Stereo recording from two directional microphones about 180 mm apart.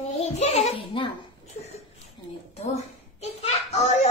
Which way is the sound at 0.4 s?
35° left (ahead or behind).